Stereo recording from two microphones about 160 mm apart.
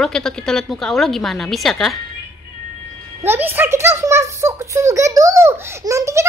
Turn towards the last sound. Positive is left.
turn(degrees=-20)  # may be behind; listen again after turning